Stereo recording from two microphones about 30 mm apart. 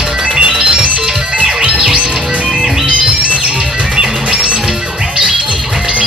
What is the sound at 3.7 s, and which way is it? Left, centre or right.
Music, right.